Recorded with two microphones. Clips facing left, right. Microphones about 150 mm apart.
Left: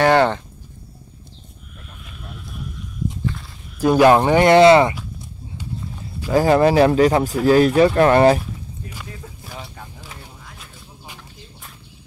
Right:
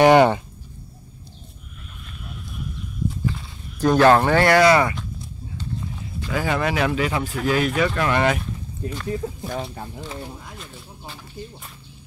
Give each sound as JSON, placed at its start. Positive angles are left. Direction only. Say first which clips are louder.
{"t": 0.0, "sound": "speech", "louder": "right 2 dB", "side_deg": -15}
{"t": 3.8, "sound": "speech", "louder": "left 2 dB", "side_deg": 10}
{"t": 6.3, "sound": "speech", "louder": "left 9 dB", "side_deg": 35}
{"t": 9.6, "sound": "speech", "louder": "right 6 dB", "side_deg": -30}